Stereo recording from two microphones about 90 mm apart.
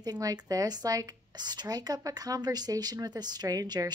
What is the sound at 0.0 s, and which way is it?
A woman's voice, 45° right (ahead or behind).